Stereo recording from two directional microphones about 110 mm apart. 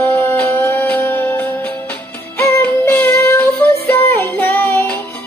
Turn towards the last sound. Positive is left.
turn(degrees=20)  # may be behind; listen again after turning